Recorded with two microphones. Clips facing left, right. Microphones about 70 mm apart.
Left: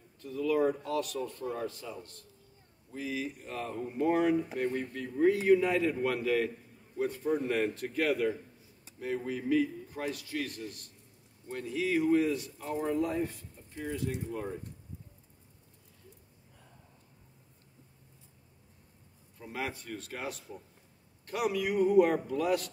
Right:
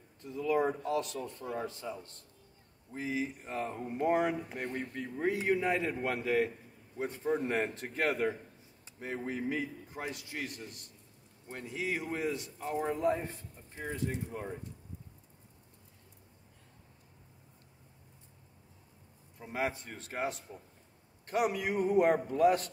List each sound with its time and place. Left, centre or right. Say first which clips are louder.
0.2 s a man's voice: left 2 dB; right
19.3 s a man's voice: right 3 dB; right